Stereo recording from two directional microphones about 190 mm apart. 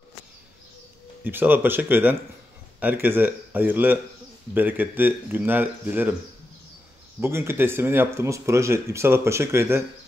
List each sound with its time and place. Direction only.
1.2 s speech: 10° right (ahead or behind)
7.2 s speech: 15° right (ahead or behind)